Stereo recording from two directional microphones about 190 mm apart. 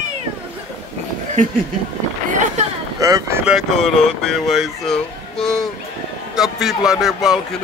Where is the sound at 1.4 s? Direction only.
40° right (ahead or behind).